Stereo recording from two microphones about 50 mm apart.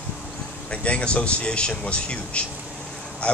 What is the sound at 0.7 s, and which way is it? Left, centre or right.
A man's voice, left.